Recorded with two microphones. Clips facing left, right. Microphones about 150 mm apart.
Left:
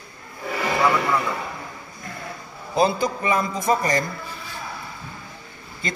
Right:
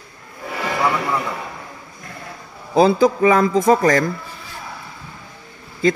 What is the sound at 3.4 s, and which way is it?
Speech, 90° right.